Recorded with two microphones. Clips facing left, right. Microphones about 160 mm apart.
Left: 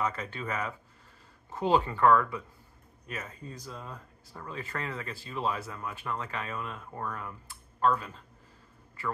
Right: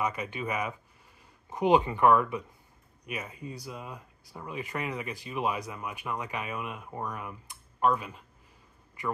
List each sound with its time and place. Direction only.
0.0 s speech: 15° right (ahead or behind)